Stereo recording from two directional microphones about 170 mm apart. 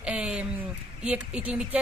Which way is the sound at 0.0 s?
5° right (ahead or behind).